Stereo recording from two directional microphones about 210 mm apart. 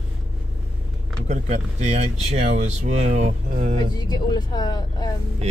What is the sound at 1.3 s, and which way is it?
Speech, 35° right (ahead or behind).